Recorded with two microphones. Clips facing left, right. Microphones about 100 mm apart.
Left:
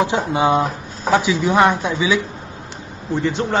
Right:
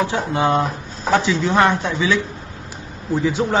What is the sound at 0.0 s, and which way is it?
A man's voice, 15° left (ahead or behind).